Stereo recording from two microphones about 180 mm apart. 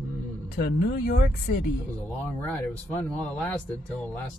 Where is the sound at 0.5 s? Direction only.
60° left (ahead or behind).